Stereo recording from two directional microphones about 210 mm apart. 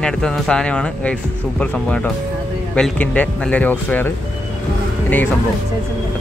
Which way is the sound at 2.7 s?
5° left (ahead or behind).